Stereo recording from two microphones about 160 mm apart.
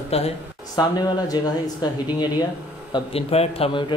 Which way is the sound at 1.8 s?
25° left (ahead or behind).